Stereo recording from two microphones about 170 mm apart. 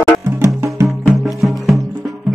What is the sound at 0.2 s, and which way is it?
Music, 15° right (ahead or behind).